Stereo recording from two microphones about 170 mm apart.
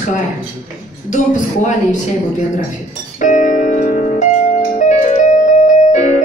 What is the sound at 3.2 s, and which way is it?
Music, 50° left (ahead or behind).